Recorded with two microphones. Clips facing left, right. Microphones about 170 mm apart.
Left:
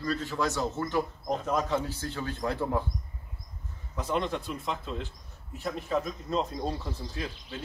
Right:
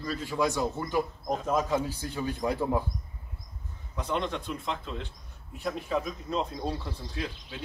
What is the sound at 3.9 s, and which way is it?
Speech, 5° left (ahead or behind).